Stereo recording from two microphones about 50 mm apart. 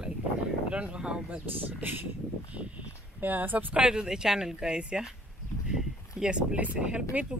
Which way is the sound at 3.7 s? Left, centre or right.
Right.